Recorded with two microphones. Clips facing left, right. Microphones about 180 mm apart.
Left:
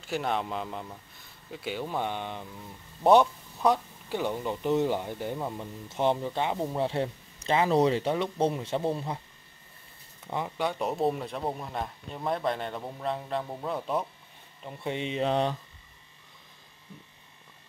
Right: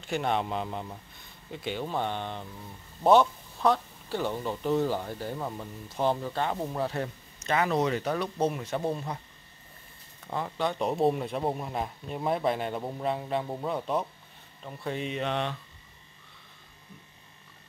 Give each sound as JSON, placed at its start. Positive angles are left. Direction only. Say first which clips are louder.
{"t": 0.0, "sound": "speech", "louder": "right 1 dB", "side_deg": 0}
{"t": 10.2, "sound": "speech", "louder": "even", "side_deg": 15}
{"t": 14.8, "sound": "speech", "louder": "left 2 dB", "side_deg": 25}